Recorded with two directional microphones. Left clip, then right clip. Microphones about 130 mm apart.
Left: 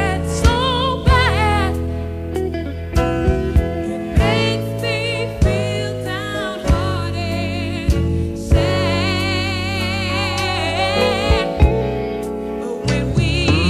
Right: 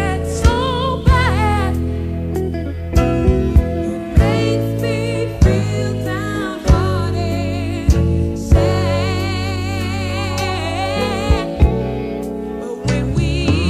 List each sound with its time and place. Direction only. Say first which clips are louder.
0.0 s music: even; 45° left (ahead or behind)
3.0 s music: right 1 dB; 20° left (ahead or behind)
4.2 s music: even; 50° left (ahead or behind)
8.5 s music: even; 50° left (ahead or behind)
10.8 s music: left 4 dB; 45° left (ahead or behind)
12.9 s music: left 1 dB; 45° left (ahead or behind)